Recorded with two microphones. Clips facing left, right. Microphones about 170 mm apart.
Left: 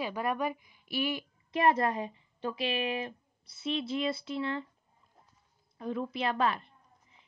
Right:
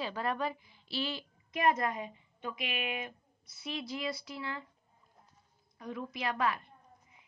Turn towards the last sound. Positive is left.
turn(degrees=30)  # may be behind; listen again after turning